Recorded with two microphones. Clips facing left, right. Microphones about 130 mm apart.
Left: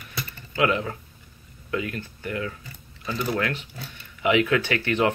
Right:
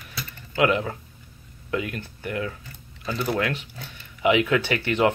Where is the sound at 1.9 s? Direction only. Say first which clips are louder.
Right 1 dB; 20° right (ahead or behind).